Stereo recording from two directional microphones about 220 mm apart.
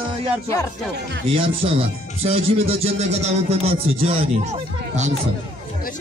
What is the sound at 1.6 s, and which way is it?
Music, 25° right (ahead or behind).